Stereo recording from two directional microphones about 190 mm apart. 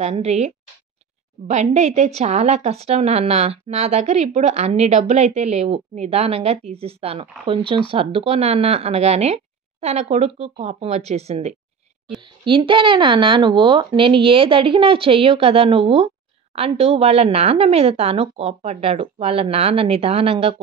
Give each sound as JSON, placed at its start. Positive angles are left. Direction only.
{"t": 0.0, "sound": "a woman's voice", "side_deg": -35}
{"t": 1.5, "sound": "a woman's voice", "side_deg": -35}